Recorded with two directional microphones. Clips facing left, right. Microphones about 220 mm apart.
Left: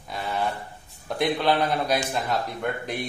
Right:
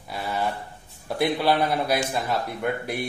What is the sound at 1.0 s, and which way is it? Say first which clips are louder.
A man's voice: right 1 dB; 5° right (ahead or behind).